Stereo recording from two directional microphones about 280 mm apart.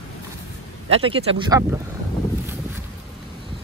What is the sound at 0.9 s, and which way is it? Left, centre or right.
Speech, centre.